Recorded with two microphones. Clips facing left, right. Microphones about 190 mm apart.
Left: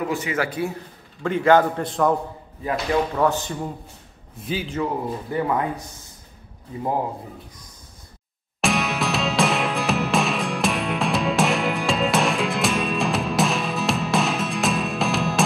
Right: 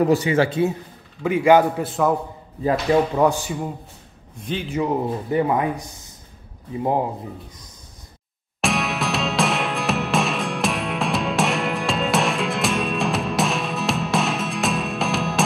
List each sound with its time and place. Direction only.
0.0 s a man's voice: 35° right (ahead or behind)
1.2 s speech: 10° right (ahead or behind)
3.2 s speech: 10° right (ahead or behind)
4.4 s a man's voice: 5° left (ahead or behind)
4.6 s speech: 15° right (ahead or behind)
8.5 s music: centre (ahead or behind)